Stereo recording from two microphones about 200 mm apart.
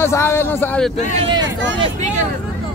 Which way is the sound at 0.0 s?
15° left (ahead or behind).